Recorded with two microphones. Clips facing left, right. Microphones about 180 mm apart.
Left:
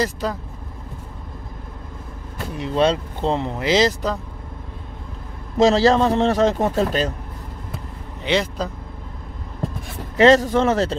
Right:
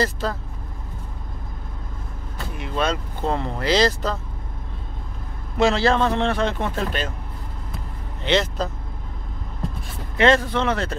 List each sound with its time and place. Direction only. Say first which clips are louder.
0.0 s speech: left 1 dB; 15° left (ahead or behind)
2.5 s speech: left 6 dB; 35° left (ahead or behind); by 4.2 s 20° left (ahead or behind)
5.6 s a man's voice: left 4 dB; 35° left (ahead or behind)
8.2 s speech: even; 10° left (ahead or behind)
10.1 s a man's voice: left 5 dB; 40° left (ahead or behind)